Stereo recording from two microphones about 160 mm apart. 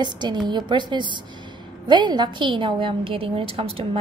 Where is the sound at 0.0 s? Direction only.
30° right (ahead or behind).